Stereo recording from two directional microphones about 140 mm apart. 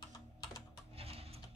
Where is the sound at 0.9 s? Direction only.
45° right (ahead or behind).